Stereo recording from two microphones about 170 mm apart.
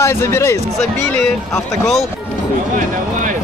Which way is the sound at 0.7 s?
5° left (ahead or behind).